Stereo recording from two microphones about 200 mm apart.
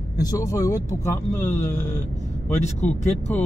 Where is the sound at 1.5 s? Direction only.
40° left (ahead or behind).